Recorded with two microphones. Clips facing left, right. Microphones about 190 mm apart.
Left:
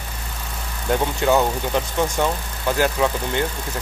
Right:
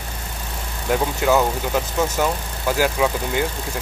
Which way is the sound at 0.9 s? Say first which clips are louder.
Even; centre (ahead or behind).